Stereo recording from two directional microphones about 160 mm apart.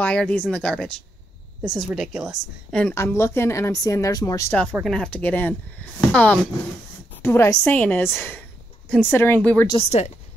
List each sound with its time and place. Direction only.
0.0 s a woman's voice: 5° left (ahead or behind)
2.9 s speech: 15° left (ahead or behind)
4.5 s speech: 10° left (ahead or behind)
9.8 s a woman's voice: 45° left (ahead or behind)